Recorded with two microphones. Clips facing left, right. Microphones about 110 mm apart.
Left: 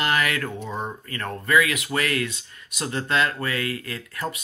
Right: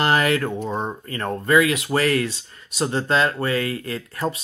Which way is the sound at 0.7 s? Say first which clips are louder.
Right 4 dB; 30° right (ahead or behind).